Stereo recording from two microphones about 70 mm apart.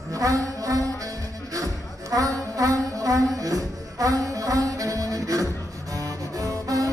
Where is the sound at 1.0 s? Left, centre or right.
Right.